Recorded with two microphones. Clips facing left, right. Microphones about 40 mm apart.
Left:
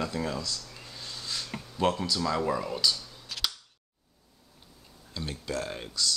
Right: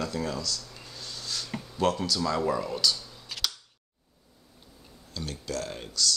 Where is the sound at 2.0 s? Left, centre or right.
Centre.